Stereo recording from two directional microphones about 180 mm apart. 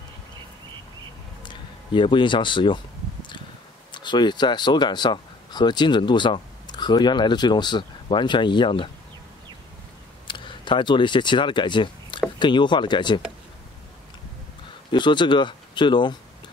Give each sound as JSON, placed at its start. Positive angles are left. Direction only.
{"t": 1.4, "sound": "a sound", "side_deg": 25}
{"t": 3.9, "sound": "speech", "side_deg": 25}
{"t": 10.2, "sound": "speech", "side_deg": 25}
{"t": 14.9, "sound": "speech", "side_deg": 25}